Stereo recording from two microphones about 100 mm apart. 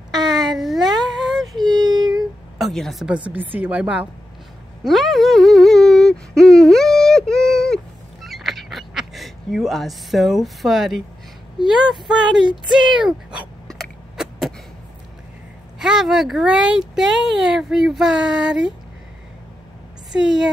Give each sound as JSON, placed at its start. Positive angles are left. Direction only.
{"t": 0.6, "sound": "a sound", "side_deg": 0}
{"t": 1.6, "sound": "child singing", "side_deg": -45}
{"t": 2.6, "sound": "speech", "side_deg": 0}
{"t": 3.3, "sound": "a woman's voice", "side_deg": -15}
{"t": 4.8, "sound": "a sound", "side_deg": 0}
{"t": 11.5, "sound": "a woman's voice", "side_deg": -5}
{"t": 14.1, "sound": "a sound", "side_deg": -5}
{"t": 15.8, "sound": "speech", "side_deg": -5}
{"t": 20.1, "sound": "a woman's voice", "side_deg": -5}